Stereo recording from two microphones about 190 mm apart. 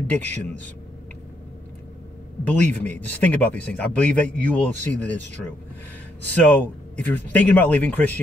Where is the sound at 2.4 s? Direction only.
10° left (ahead or behind).